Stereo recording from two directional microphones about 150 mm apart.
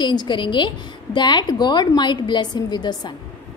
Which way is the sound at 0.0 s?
30° left (ahead or behind).